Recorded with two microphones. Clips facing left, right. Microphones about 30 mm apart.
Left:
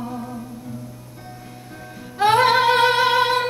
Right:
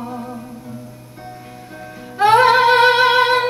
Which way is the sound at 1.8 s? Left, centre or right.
Centre.